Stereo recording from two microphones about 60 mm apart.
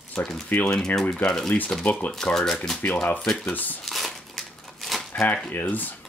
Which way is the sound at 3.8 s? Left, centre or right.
Centre.